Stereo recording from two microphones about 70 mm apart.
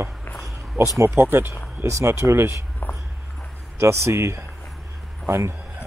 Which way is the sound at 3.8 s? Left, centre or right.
Right.